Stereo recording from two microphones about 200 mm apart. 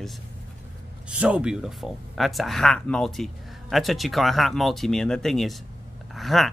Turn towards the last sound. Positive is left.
turn(degrees=0)  # may be behind; listen again after turning